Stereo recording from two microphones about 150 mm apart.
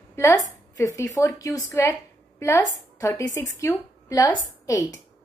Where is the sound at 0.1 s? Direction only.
20° left (ahead or behind).